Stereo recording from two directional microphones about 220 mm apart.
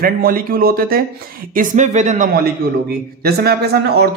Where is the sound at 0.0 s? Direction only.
40° right (ahead or behind).